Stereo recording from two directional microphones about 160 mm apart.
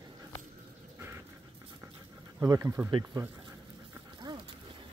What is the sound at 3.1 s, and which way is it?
Speech, 25° right (ahead or behind).